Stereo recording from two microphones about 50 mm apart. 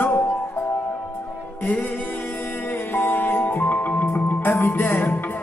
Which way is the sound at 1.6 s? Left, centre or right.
Left.